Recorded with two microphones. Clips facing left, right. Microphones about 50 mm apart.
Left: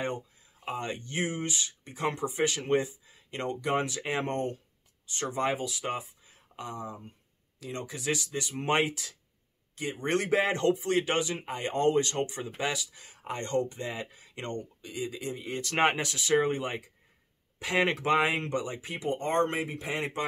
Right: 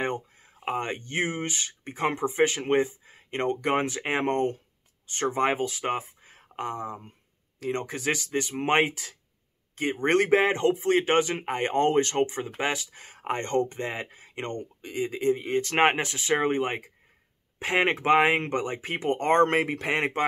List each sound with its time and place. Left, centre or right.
0.0 s speech: right